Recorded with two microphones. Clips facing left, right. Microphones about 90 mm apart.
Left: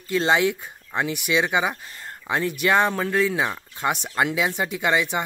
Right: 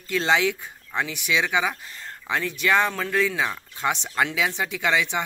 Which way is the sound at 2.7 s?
20° left (ahead or behind).